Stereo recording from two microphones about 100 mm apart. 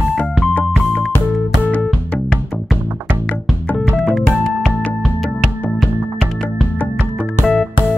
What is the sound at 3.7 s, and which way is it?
Music, centre (ahead or behind).